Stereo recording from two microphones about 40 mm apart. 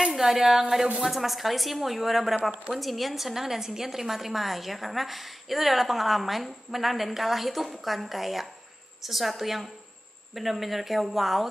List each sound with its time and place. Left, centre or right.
0.1 s a woman's voice: centre